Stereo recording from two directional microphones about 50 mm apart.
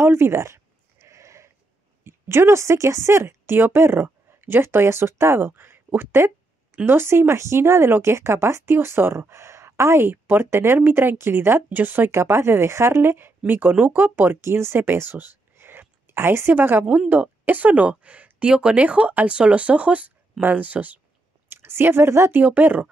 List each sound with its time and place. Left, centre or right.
0.0 s speech: right
1.0 s sheep: right
2.0 s speech: right
5.4 s speech: right
6.9 s speech: right
10.0 s speech: right
12.1 s speech: right
13.5 s speech: right
14.4 s speech: right
21.5 s speech: right
22.3 s speech: right